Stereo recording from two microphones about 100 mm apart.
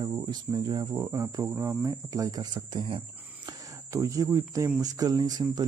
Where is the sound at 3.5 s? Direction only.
35° right (ahead or behind).